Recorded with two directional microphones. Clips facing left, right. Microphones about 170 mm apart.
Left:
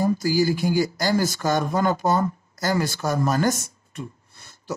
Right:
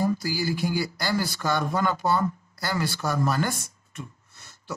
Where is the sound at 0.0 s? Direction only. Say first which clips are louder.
Left 5 dB; 45° left (ahead or behind).